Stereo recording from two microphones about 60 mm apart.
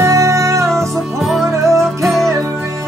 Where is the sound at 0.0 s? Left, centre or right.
Right.